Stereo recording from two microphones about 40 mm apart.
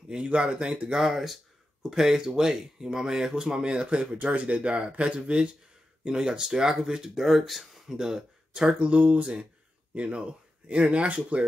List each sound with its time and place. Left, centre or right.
0.2 s speech: right
0.9 s speech: centre; by 4.2 s right
4.2 s speech: right; by 7.2 s centre
7.2 s speech: centre
8.0 s speech: centre; by 11.4 s right